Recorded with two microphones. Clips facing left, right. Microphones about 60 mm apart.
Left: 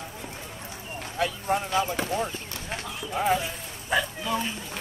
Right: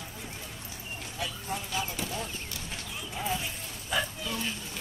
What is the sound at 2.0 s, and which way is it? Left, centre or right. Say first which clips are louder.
Clip-clop: left 7 dB; left.